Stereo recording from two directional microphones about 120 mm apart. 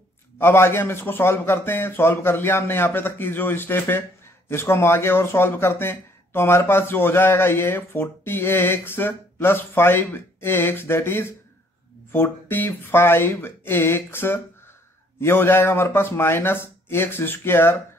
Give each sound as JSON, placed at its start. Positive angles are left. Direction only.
{"t": 0.4, "sound": "speech", "side_deg": 20}